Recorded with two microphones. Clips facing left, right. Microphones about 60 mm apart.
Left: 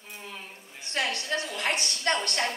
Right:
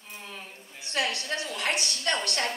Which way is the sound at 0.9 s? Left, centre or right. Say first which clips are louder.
Even; left.